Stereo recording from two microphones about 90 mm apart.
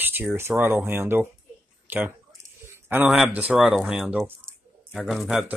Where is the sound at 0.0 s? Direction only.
20° right (ahead or behind).